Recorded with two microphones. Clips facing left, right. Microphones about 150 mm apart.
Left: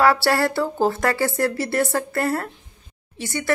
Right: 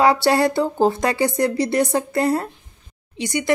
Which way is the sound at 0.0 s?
20° right (ahead or behind).